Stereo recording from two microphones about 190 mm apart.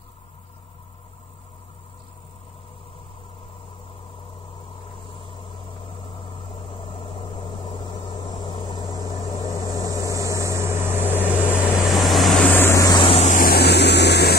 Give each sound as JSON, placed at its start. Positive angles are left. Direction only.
{"t": 6.5, "sound": "vehicle", "side_deg": 25}
{"t": 9.8, "sound": "vehicle", "side_deg": -15}
{"t": 11.5, "sound": "vehicle", "side_deg": 10}
{"t": 11.9, "sound": "vehicle", "side_deg": 0}
{"t": 13.4, "sound": "a sound", "side_deg": 55}